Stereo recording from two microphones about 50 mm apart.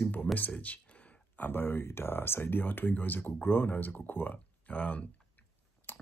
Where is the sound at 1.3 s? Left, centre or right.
Left.